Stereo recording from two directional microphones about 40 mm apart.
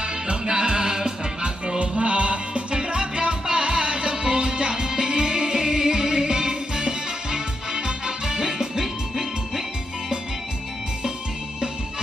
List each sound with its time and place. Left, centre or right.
0.0 s music: right